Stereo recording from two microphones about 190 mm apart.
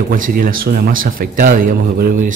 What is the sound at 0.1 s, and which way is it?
A man's voice, 45° right (ahead or behind).